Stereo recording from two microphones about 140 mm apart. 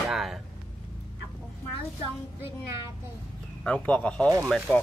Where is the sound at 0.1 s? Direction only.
Centre (ahead or behind).